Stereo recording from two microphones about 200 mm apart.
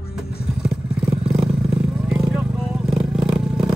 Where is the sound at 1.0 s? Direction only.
5° right (ahead or behind).